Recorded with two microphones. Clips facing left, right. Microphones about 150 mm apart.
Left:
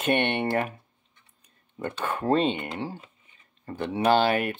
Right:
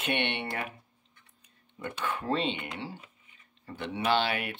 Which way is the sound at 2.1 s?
45° left (ahead or behind).